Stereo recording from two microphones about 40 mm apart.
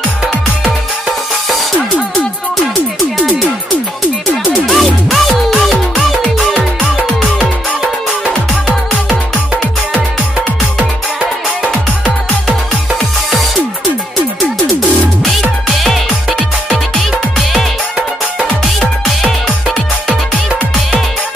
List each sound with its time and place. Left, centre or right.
4.6 s music: centre
8.6 s music: right